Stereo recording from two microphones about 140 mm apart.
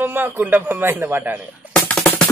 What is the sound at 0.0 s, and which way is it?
A man's voice, 15° right (ahead or behind).